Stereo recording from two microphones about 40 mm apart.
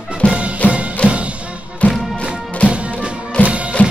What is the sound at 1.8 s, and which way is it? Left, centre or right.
Music, left.